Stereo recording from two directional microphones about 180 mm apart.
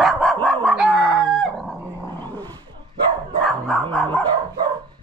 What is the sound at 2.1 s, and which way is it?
Dog, 20° right (ahead or behind).